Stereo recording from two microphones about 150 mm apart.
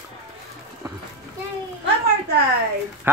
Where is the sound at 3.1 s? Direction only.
15° right (ahead or behind).